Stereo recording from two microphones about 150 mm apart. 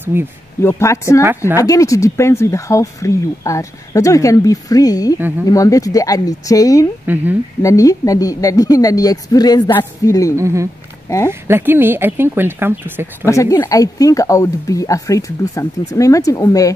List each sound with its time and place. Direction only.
0.0 s speech: 15° right (ahead or behind)
0.6 s speech: 20° left (ahead or behind)
10.3 s speech: 20° right (ahead or behind)
13.2 s speech: 20° left (ahead or behind)